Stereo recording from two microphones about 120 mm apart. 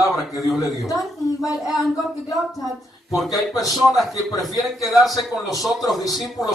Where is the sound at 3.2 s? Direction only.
Centre (ahead or behind).